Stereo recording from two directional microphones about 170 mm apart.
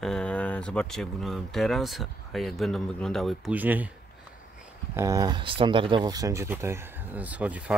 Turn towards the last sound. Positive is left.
turn(degrees=-10)  # may be behind; listen again after turning